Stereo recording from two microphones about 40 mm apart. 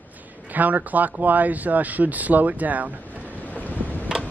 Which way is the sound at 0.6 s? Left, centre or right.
Right.